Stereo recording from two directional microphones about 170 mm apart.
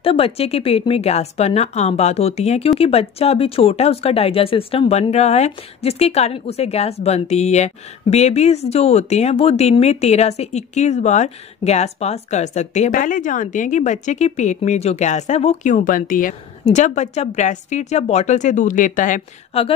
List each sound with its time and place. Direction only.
0.0 s speech: 35° left (ahead or behind); by 19.2 s 50° left (ahead or behind)
19.5 s speech: 35° left (ahead or behind)